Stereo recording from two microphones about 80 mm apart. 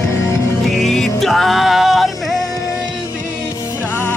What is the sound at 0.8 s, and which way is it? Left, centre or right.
Music, centre.